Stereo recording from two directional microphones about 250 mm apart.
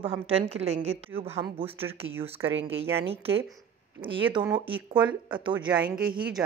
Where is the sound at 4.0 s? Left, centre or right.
Centre.